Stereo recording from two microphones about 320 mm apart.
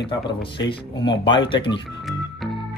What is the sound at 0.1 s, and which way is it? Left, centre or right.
Speech, centre.